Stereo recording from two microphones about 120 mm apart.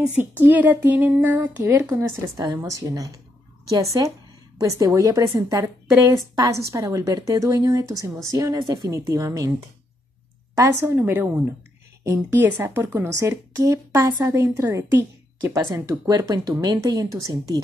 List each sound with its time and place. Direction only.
0.4 s speech: 15° right (ahead or behind)
1.9 s a woman's voice: 30° right (ahead or behind)
10.6 s a woman's voice: 20° right (ahead or behind)